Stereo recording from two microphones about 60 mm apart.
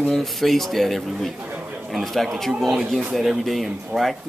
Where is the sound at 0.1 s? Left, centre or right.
Centre.